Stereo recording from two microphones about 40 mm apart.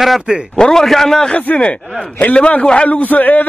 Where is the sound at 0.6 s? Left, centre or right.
Centre.